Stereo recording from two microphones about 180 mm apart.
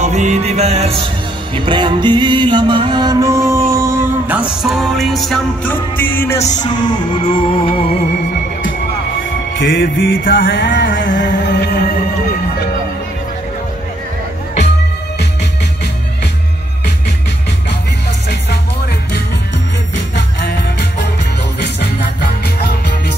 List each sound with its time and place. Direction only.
0.0 s music: 40° right (ahead or behind); by 6.4 s 15° left (ahead or behind)
6.6 s music: 25° left (ahead or behind)
9.6 s music: 90° left
10.2 s music: 75° left (ahead or behind)
20.2 s music: 65° left (ahead or behind)